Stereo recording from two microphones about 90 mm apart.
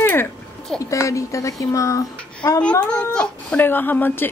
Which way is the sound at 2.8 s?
10° left (ahead or behind).